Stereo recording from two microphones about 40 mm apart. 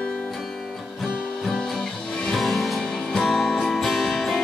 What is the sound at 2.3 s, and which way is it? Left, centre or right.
Music, centre.